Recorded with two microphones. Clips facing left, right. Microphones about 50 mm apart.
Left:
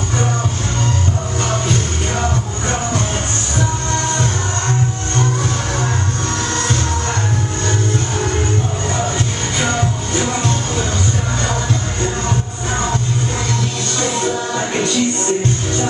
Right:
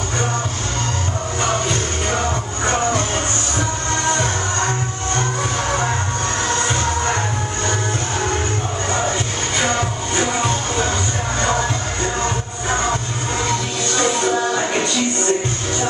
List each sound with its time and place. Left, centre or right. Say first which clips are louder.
2.6 s music: right 4 dB; centre
6.6 s music: even; centre
10.1 s music: right 1 dB; centre
13.9 s music: right 2 dB; centre